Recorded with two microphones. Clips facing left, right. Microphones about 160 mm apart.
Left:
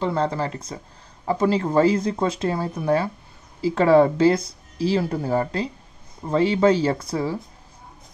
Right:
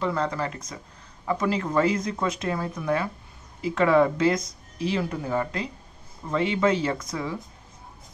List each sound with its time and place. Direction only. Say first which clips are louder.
0.0 s speech: left 3 dB; 30° left (ahead or behind)